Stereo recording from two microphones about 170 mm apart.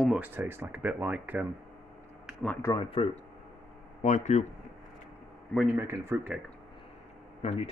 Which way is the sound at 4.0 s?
45° left (ahead or behind).